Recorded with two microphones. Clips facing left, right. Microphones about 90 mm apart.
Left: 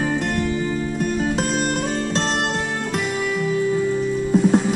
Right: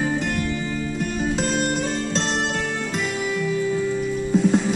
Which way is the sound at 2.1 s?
55° left (ahead or behind).